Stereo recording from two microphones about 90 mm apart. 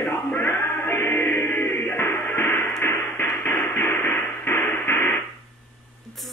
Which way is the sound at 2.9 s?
30° left (ahead or behind).